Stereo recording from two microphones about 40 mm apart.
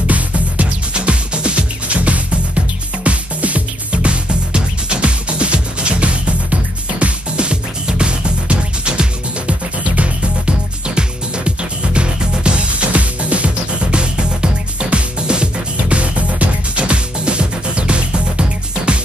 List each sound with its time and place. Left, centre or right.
0.0 s music: right